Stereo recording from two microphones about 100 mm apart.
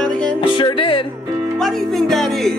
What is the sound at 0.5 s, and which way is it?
Speech, 55° left (ahead or behind).